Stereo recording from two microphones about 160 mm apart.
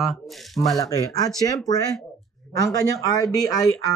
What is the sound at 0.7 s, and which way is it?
Speech, 20° left (ahead or behind).